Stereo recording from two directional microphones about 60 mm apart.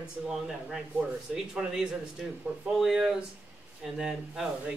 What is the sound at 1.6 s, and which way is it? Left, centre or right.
Speech, centre.